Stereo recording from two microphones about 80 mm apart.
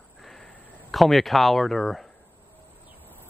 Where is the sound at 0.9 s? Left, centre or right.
Centre.